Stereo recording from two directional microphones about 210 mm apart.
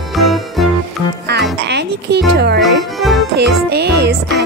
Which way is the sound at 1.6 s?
55° right (ahead or behind).